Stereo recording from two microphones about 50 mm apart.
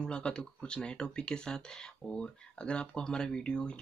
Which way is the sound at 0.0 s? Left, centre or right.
Centre.